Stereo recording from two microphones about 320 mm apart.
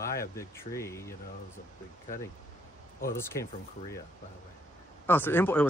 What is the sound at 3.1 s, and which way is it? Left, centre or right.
Speech, centre.